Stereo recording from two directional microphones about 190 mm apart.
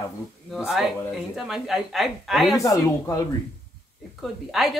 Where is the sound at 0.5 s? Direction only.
Centre (ahead or behind).